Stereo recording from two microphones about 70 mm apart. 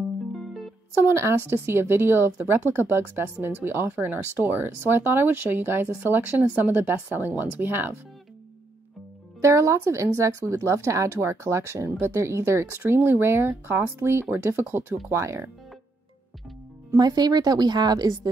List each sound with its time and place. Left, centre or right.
0.3 s music: centre
0.9 s speech: right
9.4 s speech: right
15.0 s speech: right
16.9 s a woman's voice: right